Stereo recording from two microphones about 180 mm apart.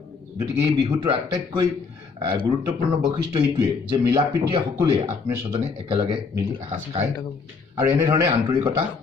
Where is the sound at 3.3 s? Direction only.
25° right (ahead or behind).